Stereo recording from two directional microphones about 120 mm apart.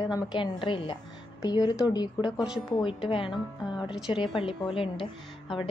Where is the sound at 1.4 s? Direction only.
35° left (ahead or behind).